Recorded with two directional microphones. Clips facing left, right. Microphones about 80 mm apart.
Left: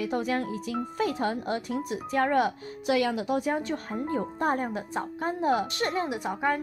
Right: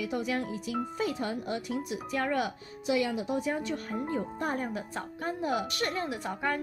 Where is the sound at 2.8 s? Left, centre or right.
Left.